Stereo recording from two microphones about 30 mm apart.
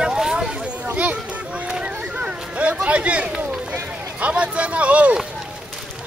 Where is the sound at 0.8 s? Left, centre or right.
Right.